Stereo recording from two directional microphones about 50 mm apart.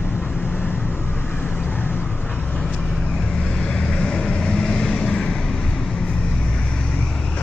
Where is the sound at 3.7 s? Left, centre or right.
Centre.